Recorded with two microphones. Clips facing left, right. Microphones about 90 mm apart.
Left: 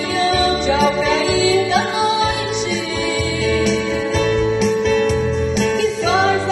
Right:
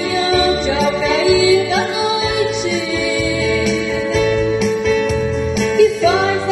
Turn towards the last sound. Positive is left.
turn(degrees=45)  # may be behind; listen again after turning